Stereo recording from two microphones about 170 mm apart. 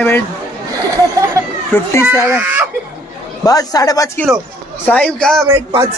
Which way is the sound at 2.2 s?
10° right (ahead or behind).